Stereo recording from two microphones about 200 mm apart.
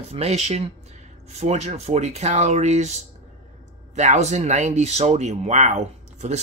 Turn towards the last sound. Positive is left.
turn(degrees=-35)  # may be behind; listen again after turning